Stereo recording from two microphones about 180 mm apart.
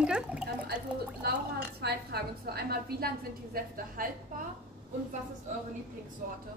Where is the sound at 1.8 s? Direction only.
60° right (ahead or behind).